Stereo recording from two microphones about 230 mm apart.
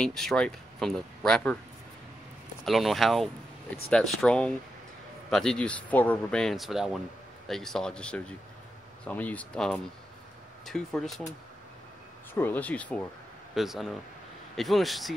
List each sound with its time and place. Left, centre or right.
0.0 s speech: centre
2.6 s speech: centre
12.4 s speech: centre